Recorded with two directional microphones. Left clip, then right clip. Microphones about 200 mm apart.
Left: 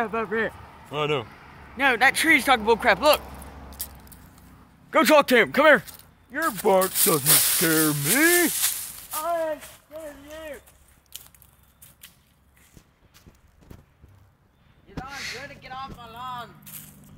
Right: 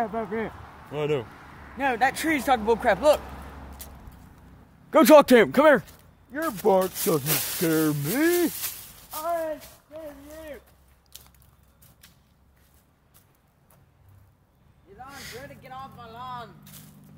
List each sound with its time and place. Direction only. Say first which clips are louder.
0.0 s speech: left 3 dB; 10° right (ahead or behind)
0.9 s speech: left 1 dB; 10° left (ahead or behind)
1.8 s speech: left 4 dB; 5° right (ahead or behind)
3.2 s a sound: even; 5° right (ahead or behind)
4.9 s speech: right 2 dB; 55° right (ahead or behind)
6.6 s speech: left 1 dB; 20° left (ahead or behind)
7.3 s speech: left 6 dB; 20° right (ahead or behind)
7.6 s speech: left 2 dB; 20° left (ahead or behind)
8.5 s a sound: left 8 dB; 15° right (ahead or behind)
11.1 s biting: left 5 dB; 10° right (ahead or behind)
13.7 s a sound: left 10 dB; 20° right (ahead or behind)
15.0 s a sound: left 6 dB; centre (ahead or behind)
15.4 s music: left 4 dB; 20° right (ahead or behind)